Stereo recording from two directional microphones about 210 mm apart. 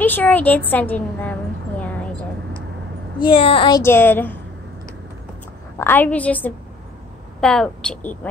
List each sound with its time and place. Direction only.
0.0 s a woman's voice: 10° left (ahead or behind)
3.2 s speech: 25° left (ahead or behind)
3.8 s a woman's voice: 10° left (ahead or behind)
5.8 s a woman's voice: 10° left (ahead or behind)